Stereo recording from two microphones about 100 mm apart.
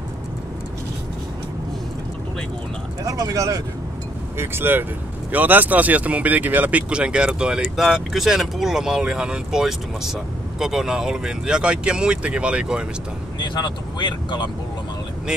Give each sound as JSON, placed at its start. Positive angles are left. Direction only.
{"t": 3.0, "sound": "speech", "side_deg": -35}
{"t": 4.4, "sound": "speech", "side_deg": -20}
{"t": 13.4, "sound": "speech", "side_deg": 50}